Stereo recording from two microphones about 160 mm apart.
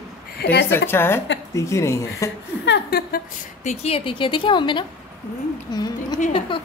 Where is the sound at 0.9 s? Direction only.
15° left (ahead or behind).